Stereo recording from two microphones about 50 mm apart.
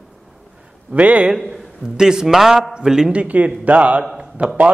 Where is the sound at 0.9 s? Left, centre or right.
Right.